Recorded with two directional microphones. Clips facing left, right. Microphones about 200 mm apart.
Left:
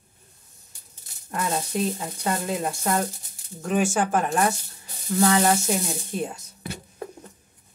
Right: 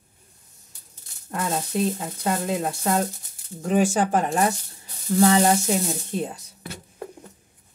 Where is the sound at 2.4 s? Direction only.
35° right (ahead or behind).